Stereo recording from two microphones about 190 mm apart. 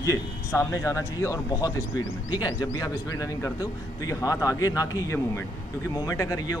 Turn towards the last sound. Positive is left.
turn(degrees=15)  # may be behind; listen again after turning